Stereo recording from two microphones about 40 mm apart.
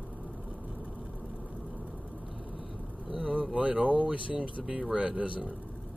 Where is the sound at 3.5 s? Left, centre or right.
Right.